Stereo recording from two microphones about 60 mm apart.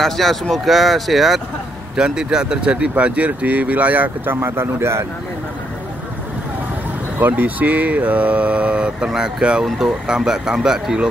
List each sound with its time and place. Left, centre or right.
0.0 s speech: centre; by 4.4 s right
4.4 s speech: right
7.2 s speech: right; by 11.1 s centre